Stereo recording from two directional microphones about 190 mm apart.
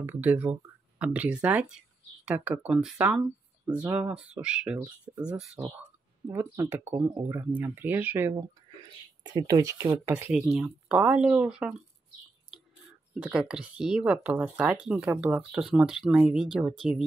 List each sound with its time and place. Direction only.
0.0 s speech: 5° right (ahead or behind)
13.2 s speech: 5° right (ahead or behind)